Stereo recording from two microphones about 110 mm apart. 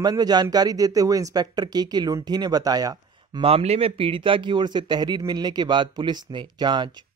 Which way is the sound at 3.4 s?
60° right (ahead or behind).